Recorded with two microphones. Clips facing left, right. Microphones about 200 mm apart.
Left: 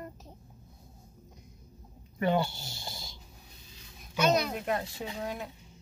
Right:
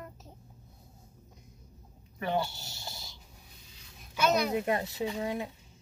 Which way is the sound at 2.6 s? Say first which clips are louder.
Left 2 dB; 15° left (ahead or behind).